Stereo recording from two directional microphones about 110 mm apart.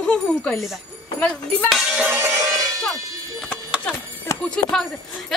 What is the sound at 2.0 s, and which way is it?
Music, 20° right (ahead or behind).